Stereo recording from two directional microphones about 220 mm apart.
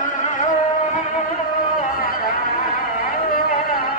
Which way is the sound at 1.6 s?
40° left (ahead or behind).